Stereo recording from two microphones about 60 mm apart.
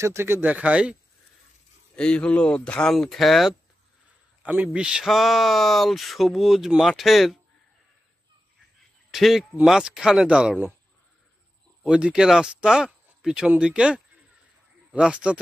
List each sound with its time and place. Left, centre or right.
0.0 s speech: right
0.5 s speech: right
2.0 s speech: centre
4.4 s speech: right
5.0 s speech: centre
9.1 s speech: centre
11.9 s speech: centre
12.6 s a sound: centre
13.6 s speech: centre